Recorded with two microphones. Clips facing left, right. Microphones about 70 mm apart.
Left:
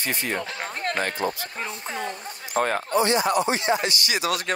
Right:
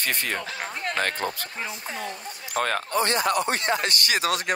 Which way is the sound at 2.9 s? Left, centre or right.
Right.